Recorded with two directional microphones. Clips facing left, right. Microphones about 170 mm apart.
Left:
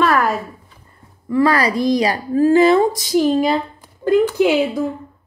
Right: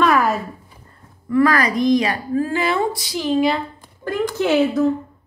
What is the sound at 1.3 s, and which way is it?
A woman's voice, 30° left (ahead or behind).